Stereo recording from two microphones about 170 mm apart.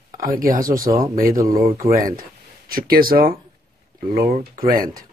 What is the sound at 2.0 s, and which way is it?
Speech, 55° right (ahead or behind).